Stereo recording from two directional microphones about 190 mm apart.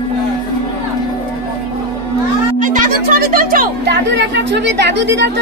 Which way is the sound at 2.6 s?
45° right (ahead or behind).